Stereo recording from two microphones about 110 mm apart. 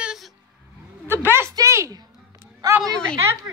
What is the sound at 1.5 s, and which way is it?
Speech, 25° right (ahead or behind).